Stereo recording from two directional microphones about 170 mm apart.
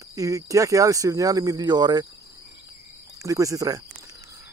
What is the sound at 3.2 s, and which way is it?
Speech, 20° right (ahead or behind).